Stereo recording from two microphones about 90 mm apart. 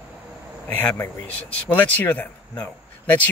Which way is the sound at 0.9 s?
20° left (ahead or behind).